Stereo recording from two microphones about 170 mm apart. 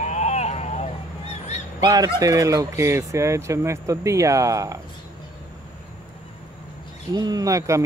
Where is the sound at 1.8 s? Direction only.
20° right (ahead or behind).